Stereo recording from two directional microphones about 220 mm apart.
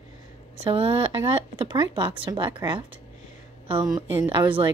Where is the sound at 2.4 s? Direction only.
20° right (ahead or behind).